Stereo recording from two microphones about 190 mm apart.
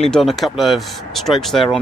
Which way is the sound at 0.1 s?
Centre (ahead or behind).